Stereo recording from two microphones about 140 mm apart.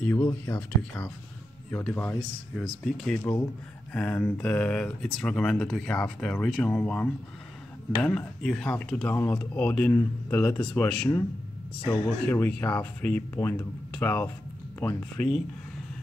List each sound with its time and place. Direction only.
0.0 s speech: 15° left (ahead or behind)
10.8 s speech: 25° left (ahead or behind)